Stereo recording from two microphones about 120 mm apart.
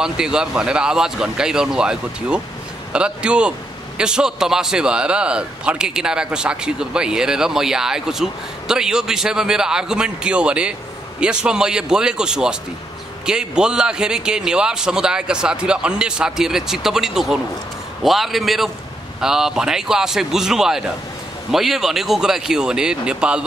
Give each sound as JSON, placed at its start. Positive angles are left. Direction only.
{"t": 0.0, "sound": "a man's voice", "side_deg": -5}